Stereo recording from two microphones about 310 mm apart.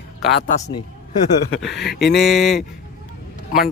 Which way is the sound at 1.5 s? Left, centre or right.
Left.